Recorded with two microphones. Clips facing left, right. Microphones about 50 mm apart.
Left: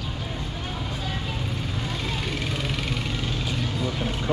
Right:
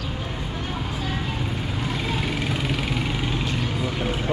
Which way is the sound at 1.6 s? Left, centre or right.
Centre.